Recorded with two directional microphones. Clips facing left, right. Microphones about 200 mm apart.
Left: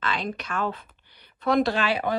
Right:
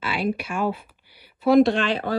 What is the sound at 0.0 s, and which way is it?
A woman's voice, 10° right (ahead or behind).